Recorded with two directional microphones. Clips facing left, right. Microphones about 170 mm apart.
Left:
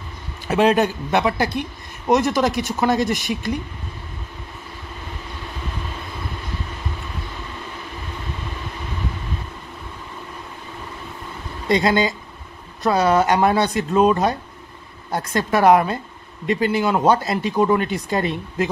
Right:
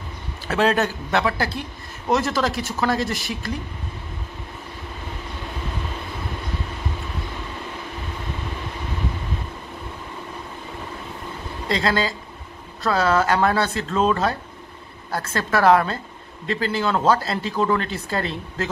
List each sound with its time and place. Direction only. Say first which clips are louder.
0.5 s speech: left 3 dB; 15° left (ahead or behind)
11.7 s speech: left 4 dB; 20° left (ahead or behind)